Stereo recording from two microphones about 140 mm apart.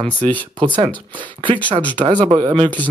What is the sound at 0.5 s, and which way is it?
Speech, 35° right (ahead or behind).